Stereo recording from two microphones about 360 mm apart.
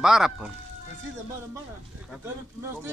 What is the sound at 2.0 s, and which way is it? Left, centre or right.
Speech, centre.